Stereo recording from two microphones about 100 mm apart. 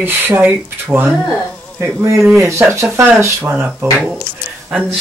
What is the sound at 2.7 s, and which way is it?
Speech, 30° right (ahead or behind).